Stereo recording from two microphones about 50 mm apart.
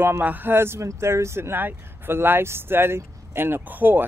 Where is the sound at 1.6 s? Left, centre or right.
Right.